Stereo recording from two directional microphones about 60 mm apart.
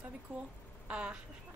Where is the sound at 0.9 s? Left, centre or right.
Centre.